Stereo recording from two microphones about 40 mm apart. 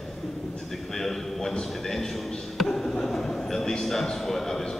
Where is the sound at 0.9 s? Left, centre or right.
Centre.